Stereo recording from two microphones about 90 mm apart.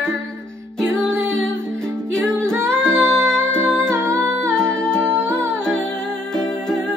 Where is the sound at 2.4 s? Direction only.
25° right (ahead or behind).